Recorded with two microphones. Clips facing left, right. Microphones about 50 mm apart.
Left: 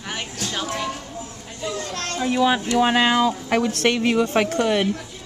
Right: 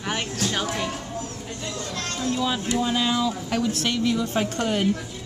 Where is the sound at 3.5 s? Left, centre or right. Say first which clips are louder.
Left 5 dB; left.